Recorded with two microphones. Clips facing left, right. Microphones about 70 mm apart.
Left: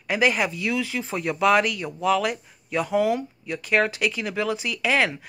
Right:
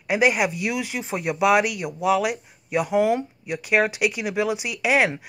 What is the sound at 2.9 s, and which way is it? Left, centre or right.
Speech, right.